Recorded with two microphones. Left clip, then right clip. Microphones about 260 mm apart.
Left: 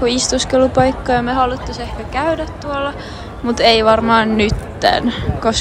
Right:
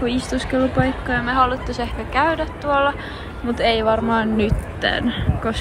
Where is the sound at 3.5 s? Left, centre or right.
Left.